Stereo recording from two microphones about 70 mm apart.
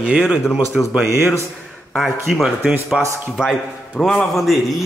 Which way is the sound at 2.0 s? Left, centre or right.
Centre.